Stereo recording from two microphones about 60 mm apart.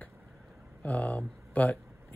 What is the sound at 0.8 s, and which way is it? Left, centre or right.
Speech, left.